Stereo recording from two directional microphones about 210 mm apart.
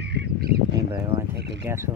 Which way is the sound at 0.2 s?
50° right (ahead or behind).